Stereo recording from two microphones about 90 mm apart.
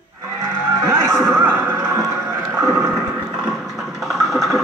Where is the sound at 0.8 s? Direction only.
30° right (ahead or behind).